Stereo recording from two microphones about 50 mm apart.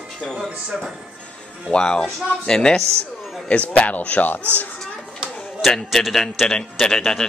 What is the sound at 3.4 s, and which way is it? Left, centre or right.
Speech, left.